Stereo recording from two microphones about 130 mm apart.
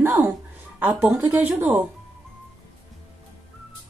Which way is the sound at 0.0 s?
20° right (ahead or behind).